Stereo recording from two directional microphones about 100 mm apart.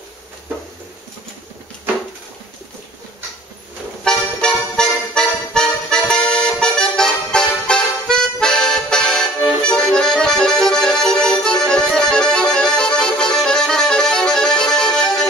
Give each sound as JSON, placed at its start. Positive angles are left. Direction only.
{"t": 4.0, "sound": "music", "side_deg": 5}